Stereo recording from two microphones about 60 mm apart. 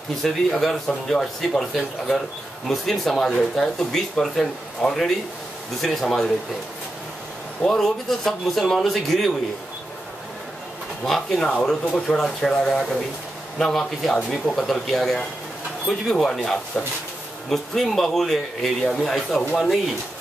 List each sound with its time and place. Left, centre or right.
0.2 s speech: centre
7.6 s speech: centre
11.1 s speech: centre
16.8 s speech: centre
17.5 s speech: centre